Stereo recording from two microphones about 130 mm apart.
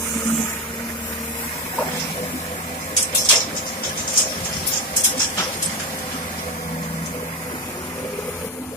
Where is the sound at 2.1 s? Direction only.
55° left (ahead or behind).